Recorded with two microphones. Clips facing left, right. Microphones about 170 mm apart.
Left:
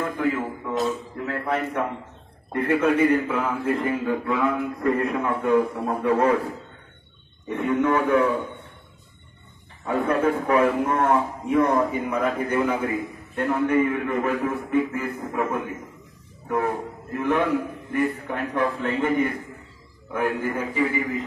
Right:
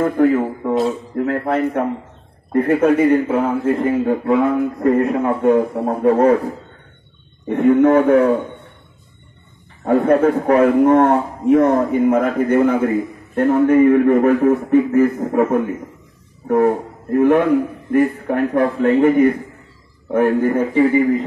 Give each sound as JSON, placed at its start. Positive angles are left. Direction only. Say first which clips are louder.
{"t": 0.0, "sound": "a sound", "louder": "right 10 dB", "side_deg": -40}
{"t": 1.1, "sound": "a sound", "louder": "right 10 dB", "side_deg": -45}
{"t": 1.5, "sound": "a man's voice", "louder": "right 7 dB", "side_deg": -45}
{"t": 3.0, "sound": "a man's voice", "louder": "right 6 dB", "side_deg": -30}
{"t": 3.3, "sound": "a man's voice", "louder": "right 7 dB", "side_deg": -40}
{"t": 7.4, "sound": "a man's voice", "louder": "right 10 dB", "side_deg": -50}
{"t": 10.0, "sound": "a man's voice", "louder": "right 7 dB", "side_deg": -50}